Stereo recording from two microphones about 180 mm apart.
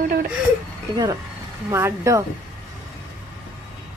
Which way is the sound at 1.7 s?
15° right (ahead or behind).